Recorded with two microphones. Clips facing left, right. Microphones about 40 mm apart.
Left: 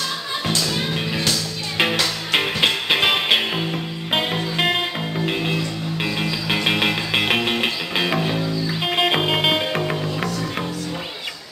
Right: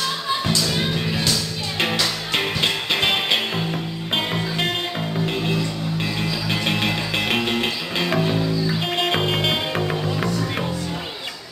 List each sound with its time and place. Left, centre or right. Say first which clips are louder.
1.8 s music: left 2 dB; centre
8.1 s music: right 1 dB; centre
10.0 s music: right 1 dB; centre